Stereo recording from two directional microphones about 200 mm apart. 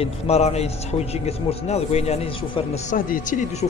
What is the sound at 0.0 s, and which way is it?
A man's voice, 30° left (ahead or behind).